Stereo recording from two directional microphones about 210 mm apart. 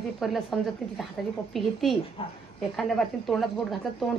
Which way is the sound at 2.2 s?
25° left (ahead or behind).